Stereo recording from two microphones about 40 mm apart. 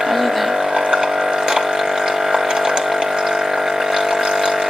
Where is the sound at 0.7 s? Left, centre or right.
Centre.